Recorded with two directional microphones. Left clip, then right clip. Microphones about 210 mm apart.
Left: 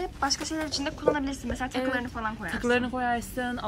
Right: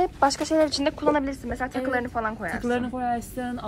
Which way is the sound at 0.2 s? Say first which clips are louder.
Right 4 dB; centre (ahead or behind).